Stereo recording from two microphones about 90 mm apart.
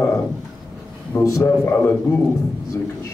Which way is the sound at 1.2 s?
35° left (ahead or behind).